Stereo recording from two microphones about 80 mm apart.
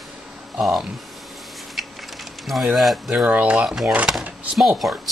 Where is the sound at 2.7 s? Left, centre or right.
Centre.